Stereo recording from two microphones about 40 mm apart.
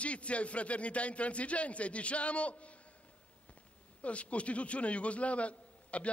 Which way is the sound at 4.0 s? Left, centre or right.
Left.